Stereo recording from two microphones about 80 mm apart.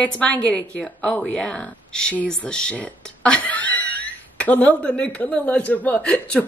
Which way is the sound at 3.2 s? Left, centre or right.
Centre.